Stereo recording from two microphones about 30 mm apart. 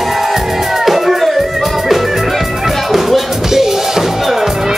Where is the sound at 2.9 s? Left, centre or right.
Centre.